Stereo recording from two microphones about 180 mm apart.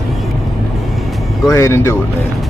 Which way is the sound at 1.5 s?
15° left (ahead or behind).